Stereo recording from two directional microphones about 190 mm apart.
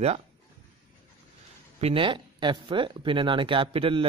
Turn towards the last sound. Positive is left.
turn(degrees=-30)  # may be behind; listen again after turning